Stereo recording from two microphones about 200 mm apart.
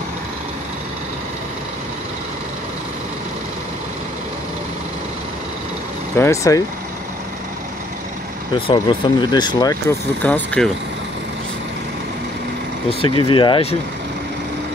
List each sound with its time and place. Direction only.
6.1 s speech: 15° left (ahead or behind)
8.5 s speech: 25° left (ahead or behind); by 10.7 s 5° left (ahead or behind)
13.0 s speech: 25° left (ahead or behind)